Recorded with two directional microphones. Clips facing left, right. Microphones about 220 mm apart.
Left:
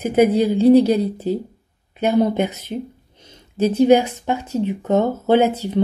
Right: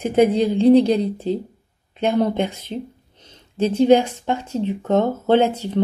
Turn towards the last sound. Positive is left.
turn(degrees=10)  # may be behind; listen again after turning